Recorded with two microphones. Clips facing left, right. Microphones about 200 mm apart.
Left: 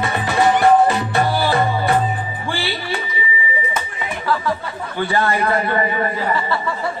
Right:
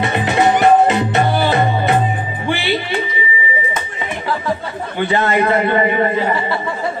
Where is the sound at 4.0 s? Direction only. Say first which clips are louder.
Even; 20° right (ahead or behind).